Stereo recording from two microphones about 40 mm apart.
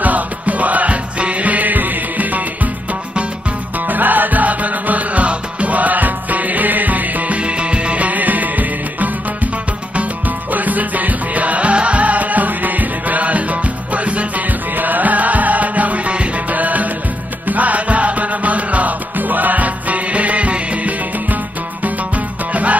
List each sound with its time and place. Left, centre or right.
0.0 s music: right
7.3 s music: right
14.8 s music: right
16.5 s music: right